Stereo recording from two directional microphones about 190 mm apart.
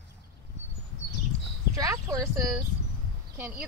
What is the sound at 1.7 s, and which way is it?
Speech, 15° right (ahead or behind).